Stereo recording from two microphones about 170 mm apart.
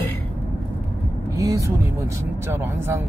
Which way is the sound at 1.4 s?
20° right (ahead or behind).